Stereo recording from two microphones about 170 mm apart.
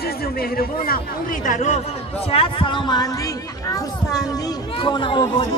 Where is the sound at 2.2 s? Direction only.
35° left (ahead or behind).